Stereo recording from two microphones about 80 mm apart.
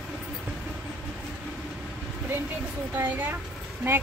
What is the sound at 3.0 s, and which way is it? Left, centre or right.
Speech, right.